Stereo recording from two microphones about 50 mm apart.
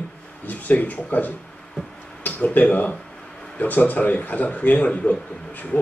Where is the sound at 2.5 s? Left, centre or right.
Left.